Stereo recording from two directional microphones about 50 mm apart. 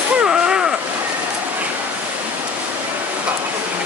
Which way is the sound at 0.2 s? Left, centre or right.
Centre.